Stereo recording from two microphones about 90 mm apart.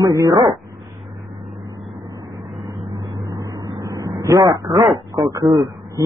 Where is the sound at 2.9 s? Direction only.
45° right (ahead or behind).